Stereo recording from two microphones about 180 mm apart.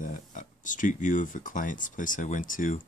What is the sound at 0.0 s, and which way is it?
Speech, 45° left (ahead or behind).